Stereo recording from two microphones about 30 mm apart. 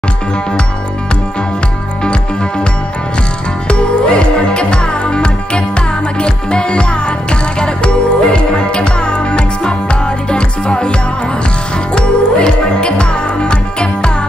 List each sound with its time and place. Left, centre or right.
3.6 s music: left